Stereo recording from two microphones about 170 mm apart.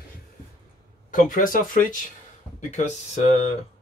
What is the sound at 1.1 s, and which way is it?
Speech, 55° left (ahead or behind).